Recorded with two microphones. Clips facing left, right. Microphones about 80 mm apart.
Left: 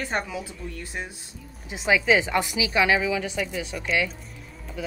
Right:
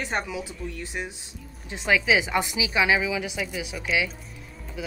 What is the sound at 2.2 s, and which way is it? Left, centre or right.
A woman's voice, centre.